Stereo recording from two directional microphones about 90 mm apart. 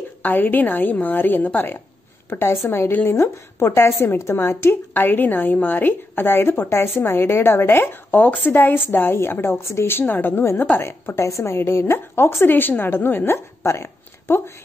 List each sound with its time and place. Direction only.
0.2 s speech: 20° left (ahead or behind)